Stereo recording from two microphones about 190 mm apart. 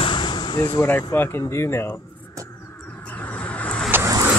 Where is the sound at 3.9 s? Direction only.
15° right (ahead or behind).